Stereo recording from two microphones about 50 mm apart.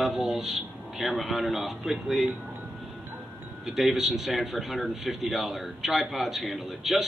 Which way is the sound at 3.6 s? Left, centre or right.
Centre.